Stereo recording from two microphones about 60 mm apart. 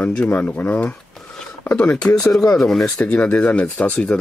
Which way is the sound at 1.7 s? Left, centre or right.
Centre.